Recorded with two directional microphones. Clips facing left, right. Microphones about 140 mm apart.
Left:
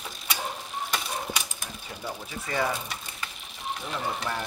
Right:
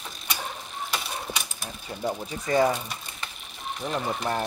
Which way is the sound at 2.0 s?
40° right (ahead or behind).